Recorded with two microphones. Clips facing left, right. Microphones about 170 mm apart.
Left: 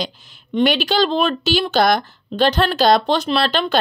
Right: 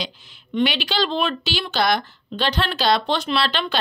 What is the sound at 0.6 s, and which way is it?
Speech, 45° left (ahead or behind).